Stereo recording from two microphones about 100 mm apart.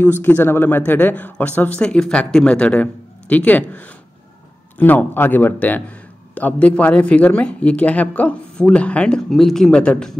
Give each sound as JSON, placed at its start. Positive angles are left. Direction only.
{"t": 0.0, "sound": "speech", "side_deg": 20}